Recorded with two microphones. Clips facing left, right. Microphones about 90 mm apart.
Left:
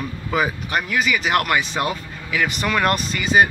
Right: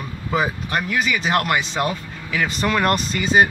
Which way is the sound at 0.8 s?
35° right (ahead or behind).